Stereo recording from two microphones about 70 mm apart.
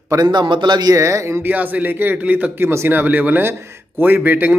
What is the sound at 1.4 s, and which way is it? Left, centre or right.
Speech, right.